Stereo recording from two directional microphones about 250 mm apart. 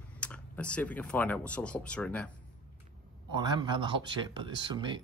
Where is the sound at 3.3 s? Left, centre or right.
Centre.